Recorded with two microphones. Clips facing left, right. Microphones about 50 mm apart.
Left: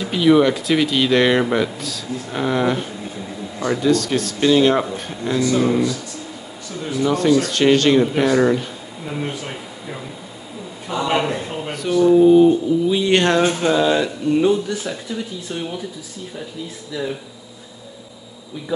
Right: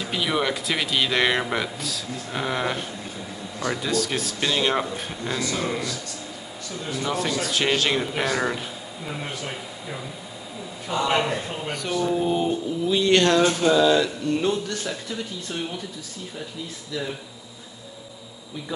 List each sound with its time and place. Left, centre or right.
0.0 s speech: centre
3.5 s speech: centre
3.8 s speech: centre
6.8 s speech: centre
12.8 s speech: centre
13.2 s speech: left
14.4 s speech: centre
16.9 s speech: centre